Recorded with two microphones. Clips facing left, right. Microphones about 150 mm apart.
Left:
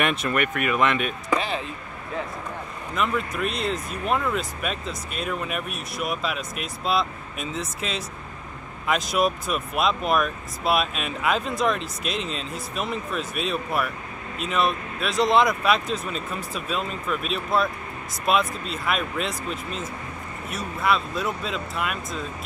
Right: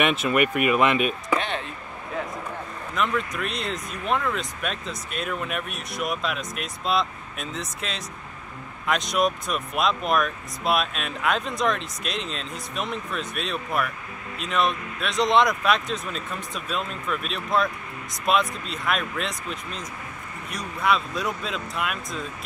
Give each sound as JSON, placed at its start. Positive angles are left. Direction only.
{"t": 0.0, "sound": "speech", "side_deg": 0}
{"t": 0.3, "sound": "speech", "side_deg": -15}
{"t": 1.3, "sound": "a sound", "side_deg": 0}
{"t": 2.9, "sound": "speech", "side_deg": 5}